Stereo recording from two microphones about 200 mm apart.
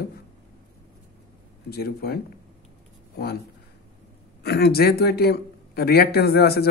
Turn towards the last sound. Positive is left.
turn(degrees=50)  # may be behind; listen again after turning